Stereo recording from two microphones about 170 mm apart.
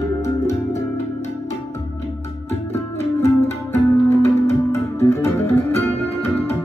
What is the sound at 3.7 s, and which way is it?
Music, 15° left (ahead or behind).